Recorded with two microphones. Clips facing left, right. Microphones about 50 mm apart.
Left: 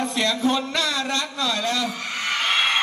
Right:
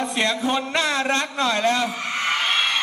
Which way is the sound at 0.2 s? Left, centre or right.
Right.